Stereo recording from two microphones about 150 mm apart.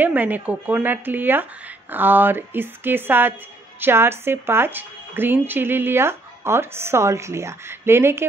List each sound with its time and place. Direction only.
0.0 s speech: 10° right (ahead or behind)